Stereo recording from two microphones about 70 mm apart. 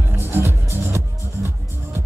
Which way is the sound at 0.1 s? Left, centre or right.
Right.